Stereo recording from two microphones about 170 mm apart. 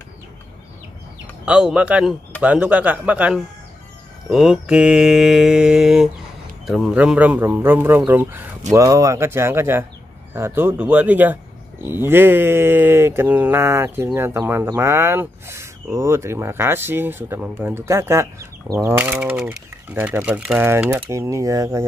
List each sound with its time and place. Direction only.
1.4 s speech: 5° right (ahead or behind)
4.3 s mantra: 5° right (ahead or behind)
6.6 s speech: centre (ahead or behind); by 21.8 s 20° right (ahead or behind)